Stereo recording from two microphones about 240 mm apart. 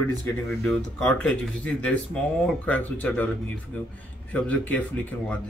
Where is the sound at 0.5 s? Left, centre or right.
Centre.